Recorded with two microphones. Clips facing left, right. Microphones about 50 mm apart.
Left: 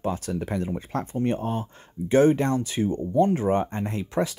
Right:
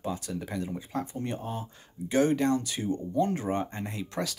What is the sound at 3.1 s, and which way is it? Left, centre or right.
Speech, centre.